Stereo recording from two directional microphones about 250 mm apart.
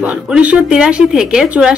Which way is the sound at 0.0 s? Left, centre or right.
Centre.